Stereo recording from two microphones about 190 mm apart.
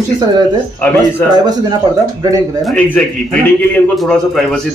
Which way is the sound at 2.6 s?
5° left (ahead or behind).